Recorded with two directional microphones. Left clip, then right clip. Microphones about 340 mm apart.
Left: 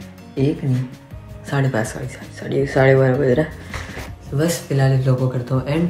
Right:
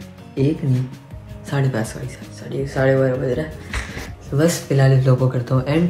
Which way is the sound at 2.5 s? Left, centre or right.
Left.